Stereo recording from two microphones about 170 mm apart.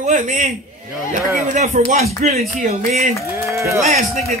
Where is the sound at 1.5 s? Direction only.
45° right (ahead or behind).